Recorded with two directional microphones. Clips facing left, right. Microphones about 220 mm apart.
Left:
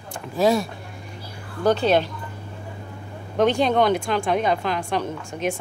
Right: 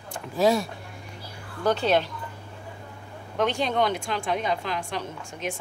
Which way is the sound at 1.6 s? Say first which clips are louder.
Left 4 dB; 35° left (ahead or behind).